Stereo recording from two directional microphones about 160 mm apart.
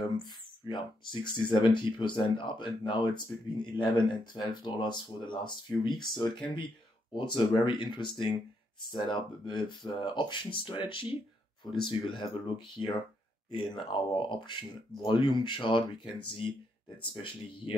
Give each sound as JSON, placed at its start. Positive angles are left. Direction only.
{"t": 0.2, "sound": "speech", "side_deg": 30}